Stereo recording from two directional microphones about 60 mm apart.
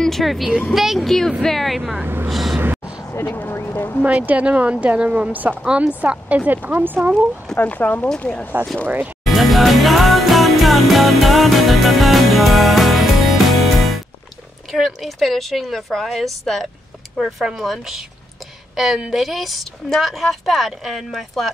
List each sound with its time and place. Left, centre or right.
0.0 s a woman's voice: centre
2.2 s vehicle: centre
3.3 s speech: left
4.0 s speech: right
7.5 s speech: left
9.2 s music: centre
14.7 s a woman's voice: centre
19.1 s a woman's voice: centre